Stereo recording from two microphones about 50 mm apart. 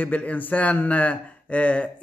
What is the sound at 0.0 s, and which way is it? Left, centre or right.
A man's voice, left.